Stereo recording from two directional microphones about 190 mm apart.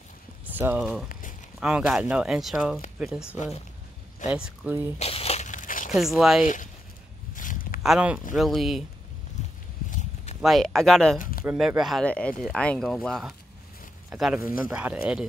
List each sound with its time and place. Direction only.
0.5 s speech: 10° right (ahead or behind)
4.3 s speech: 5° right (ahead or behind)
4.9 s a sound: 35° left (ahead or behind)
5.9 s speech: centre (ahead or behind)
6.4 s speech: 40° left (ahead or behind)
7.3 s a sound: 45° left (ahead or behind)
7.8 s speech: 5° right (ahead or behind)
9.8 s walk: 40° left (ahead or behind)
10.4 s speech: centre (ahead or behind)
11.1 s a sound: 50° left (ahead or behind)
11.4 s speech: 5° right (ahead or behind)